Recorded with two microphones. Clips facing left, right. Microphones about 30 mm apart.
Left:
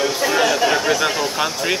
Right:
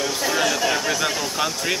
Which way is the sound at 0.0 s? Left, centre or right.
Centre.